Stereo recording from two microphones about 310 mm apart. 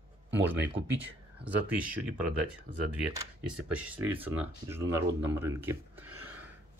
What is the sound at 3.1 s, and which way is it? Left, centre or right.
Speech, centre.